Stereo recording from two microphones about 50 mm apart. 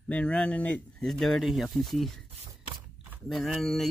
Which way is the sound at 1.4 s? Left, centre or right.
Centre.